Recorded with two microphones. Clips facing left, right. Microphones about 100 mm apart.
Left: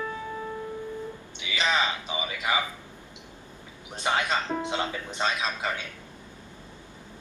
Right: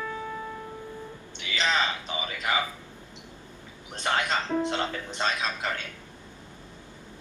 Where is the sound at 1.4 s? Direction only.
15° left (ahead or behind).